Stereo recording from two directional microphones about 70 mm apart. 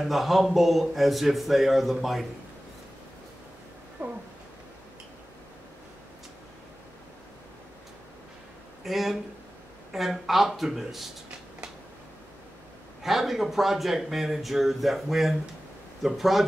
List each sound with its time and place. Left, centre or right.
0.0 s speech: centre
4.0 s a sound: right
8.8 s speech: centre
13.0 s speech: centre